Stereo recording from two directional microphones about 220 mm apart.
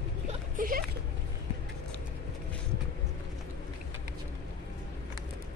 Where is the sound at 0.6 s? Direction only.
40° right (ahead or behind).